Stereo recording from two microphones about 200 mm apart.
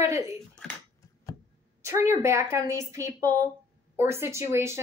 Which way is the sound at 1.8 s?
15° right (ahead or behind).